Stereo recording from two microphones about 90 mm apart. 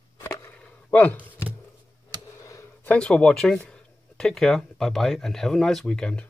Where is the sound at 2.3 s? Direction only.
35° left (ahead or behind).